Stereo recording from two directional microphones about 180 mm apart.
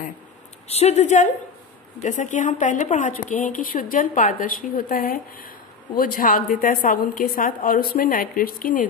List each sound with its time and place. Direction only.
0.7 s a woman's voice: 35° left (ahead or behind)